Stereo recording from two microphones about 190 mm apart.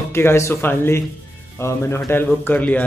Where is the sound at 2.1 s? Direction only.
10° left (ahead or behind).